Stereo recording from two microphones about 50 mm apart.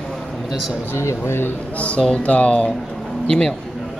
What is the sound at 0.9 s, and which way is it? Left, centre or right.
Speech, left.